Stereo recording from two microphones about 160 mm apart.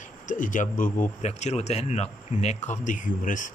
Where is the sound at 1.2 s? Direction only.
45° left (ahead or behind).